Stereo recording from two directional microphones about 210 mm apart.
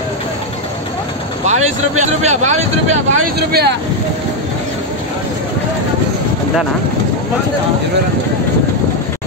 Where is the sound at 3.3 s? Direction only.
50° right (ahead or behind).